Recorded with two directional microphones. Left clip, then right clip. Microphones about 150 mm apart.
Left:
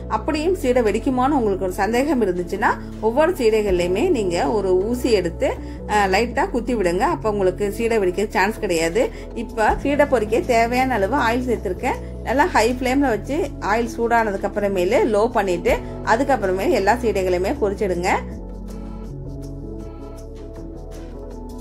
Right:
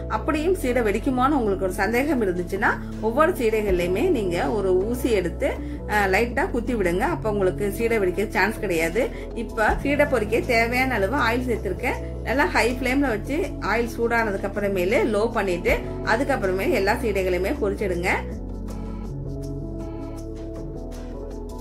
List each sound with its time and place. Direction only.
0.1 s a woman's voice: 15° left (ahead or behind)